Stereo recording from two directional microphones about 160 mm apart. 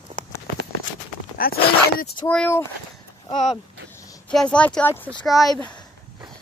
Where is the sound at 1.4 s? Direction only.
65° left (ahead or behind).